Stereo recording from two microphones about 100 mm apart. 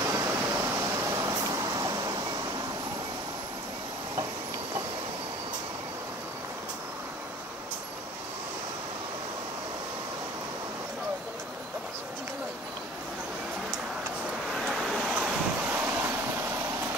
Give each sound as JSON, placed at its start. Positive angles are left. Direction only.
{"t": 0.1, "sound": "vehicle", "side_deg": -25}
{"t": 14.5, "sound": "vehicle", "side_deg": 0}
{"t": 15.1, "sound": "vehicle", "side_deg": -15}